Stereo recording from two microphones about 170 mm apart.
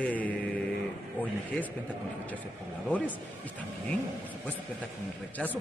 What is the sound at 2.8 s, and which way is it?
Speech, 10° left (ahead or behind).